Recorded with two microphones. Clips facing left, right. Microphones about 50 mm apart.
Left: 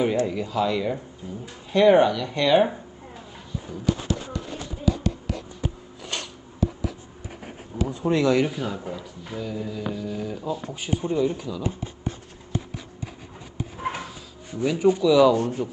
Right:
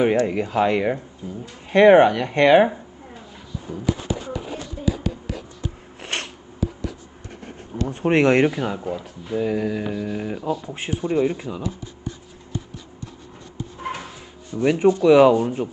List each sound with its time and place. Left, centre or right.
0.0 s speech: right
3.8 s a sound: centre
5.9 s a sound: right
6.6 s a sound: centre
7.9 s speech: right
8.7 s speech: centre
9.4 s music: right
9.9 s speech: right
13.7 s drawer open or close: centre
14.6 s speech: right